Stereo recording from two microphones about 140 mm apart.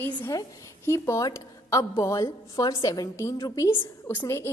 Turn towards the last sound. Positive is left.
turn(degrees=20)  # may be behind; listen again after turning